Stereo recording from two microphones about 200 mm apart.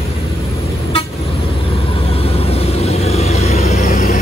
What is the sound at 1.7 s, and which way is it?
Vehicle, 30° left (ahead or behind).